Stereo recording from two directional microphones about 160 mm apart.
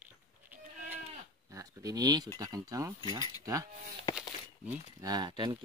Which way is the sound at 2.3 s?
25° right (ahead or behind).